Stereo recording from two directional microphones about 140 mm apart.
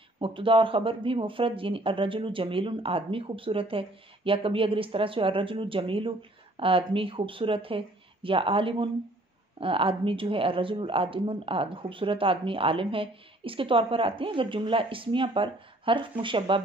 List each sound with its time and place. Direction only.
0.2 s speech: 40° right (ahead or behind)